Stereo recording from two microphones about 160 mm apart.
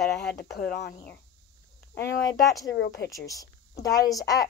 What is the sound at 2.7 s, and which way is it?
Speech, 90° left.